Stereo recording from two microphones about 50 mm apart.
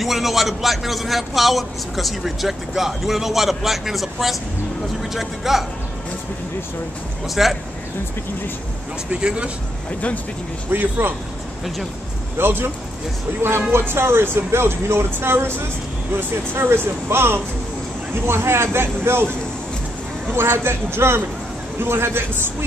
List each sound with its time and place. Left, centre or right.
0.0 s a man's voice: centre
7.2 s a man's voice: centre
9.1 s speech: right
9.8 s speech: left
10.7 s speech: right
12.4 s speech: right
20.3 s speech: right